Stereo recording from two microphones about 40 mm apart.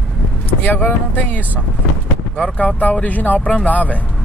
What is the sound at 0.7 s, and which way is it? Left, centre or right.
Speech, left.